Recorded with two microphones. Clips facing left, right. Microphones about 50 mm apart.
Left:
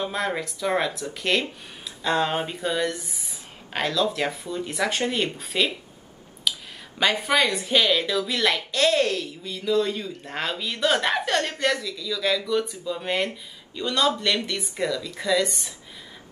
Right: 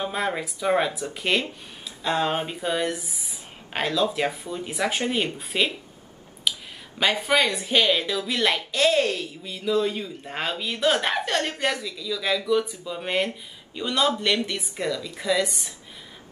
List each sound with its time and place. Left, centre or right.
0.0 s a woman's voice: centre
3.0 s speech: left
3.7 s a woman's voice: centre
6.5 s a sound: centre
7.0 s a woman's voice: centre